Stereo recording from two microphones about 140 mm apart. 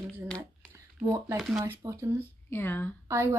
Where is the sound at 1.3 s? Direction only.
Centre (ahead or behind).